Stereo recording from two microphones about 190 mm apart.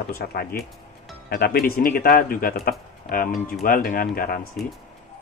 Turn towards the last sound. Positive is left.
turn(degrees=50)  # may be behind; listen again after turning